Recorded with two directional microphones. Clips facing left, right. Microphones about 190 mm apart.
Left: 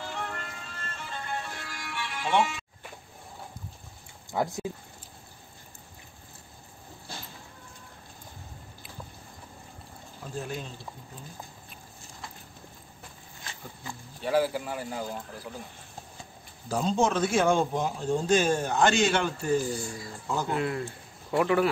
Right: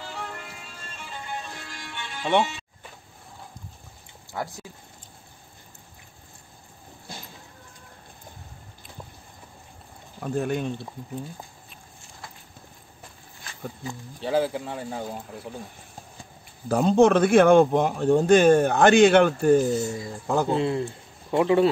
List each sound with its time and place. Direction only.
0.0 s music: 5° right (ahead or behind); by 2.5 s 25° right (ahead or behind)
4.3 s speech: 15° left (ahead or behind)
10.2 s a man's voice: 60° right (ahead or behind)
14.2 s speech: 25° right (ahead or behind)
16.6 s a man's voice: 60° right (ahead or behind)
19.7 s speech: 20° right (ahead or behind)